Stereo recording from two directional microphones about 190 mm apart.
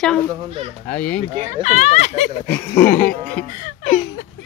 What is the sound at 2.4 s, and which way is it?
Speech, 10° left (ahead or behind).